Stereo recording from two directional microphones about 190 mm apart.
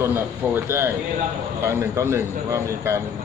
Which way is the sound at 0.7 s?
10° right (ahead or behind).